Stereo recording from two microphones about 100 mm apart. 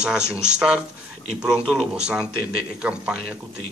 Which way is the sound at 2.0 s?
10° right (ahead or behind).